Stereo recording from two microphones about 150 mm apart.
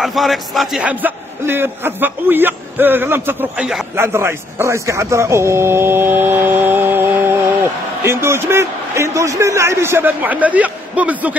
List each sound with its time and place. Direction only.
0.0 s a man's voice: centre (ahead or behind)